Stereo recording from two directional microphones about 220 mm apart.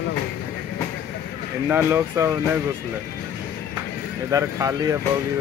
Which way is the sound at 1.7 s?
10° right (ahead or behind).